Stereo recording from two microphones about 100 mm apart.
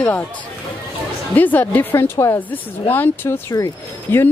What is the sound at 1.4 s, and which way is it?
Speech, 15° left (ahead or behind).